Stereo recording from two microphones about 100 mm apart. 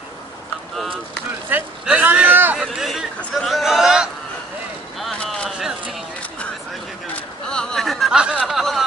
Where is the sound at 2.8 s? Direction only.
Centre (ahead or behind).